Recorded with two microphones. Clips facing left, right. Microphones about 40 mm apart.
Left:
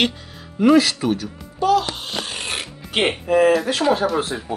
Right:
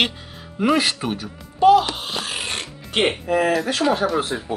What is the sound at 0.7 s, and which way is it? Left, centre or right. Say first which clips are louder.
Speech: left 5 dB; centre.